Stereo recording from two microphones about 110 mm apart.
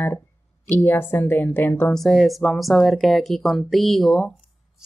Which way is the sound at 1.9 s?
5° left (ahead or behind).